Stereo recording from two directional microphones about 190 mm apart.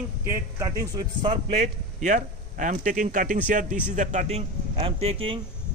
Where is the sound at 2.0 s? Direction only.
40° right (ahead or behind).